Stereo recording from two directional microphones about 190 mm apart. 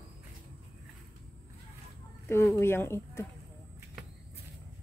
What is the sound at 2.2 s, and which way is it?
Speech, 15° left (ahead or behind).